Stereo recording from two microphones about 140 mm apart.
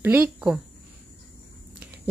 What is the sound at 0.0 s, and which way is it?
Speech, 15° right (ahead or behind).